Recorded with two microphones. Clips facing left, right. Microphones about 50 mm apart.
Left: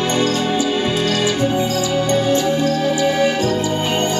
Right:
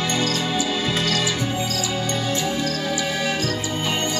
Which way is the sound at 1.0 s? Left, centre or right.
Left.